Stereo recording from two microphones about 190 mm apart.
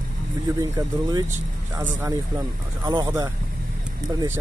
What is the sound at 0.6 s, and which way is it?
Speech, 20° right (ahead or behind).